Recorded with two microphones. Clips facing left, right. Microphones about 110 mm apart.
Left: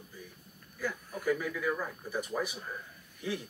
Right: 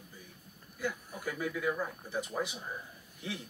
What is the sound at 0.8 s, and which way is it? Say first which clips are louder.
Speech: left 1 dB; 15° right (ahead or behind).